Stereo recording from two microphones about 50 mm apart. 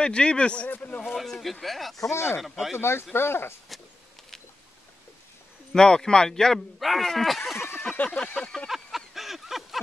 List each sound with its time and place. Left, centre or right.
0.0 s speech: centre
1.2 s speech: centre
2.0 s speech: left
2.4 s speech: centre
2.8 s speech: left
5.7 s speech: centre
7.8 s a sound: left
8.4 s speech: centre
8.6 s a sound: centre